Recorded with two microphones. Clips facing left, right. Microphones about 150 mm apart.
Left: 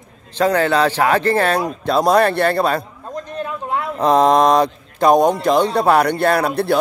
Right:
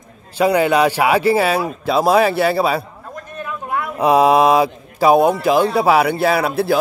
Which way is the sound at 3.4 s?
25° left (ahead or behind).